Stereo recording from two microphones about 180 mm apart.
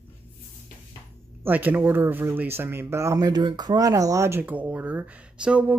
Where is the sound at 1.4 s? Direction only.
10° right (ahead or behind).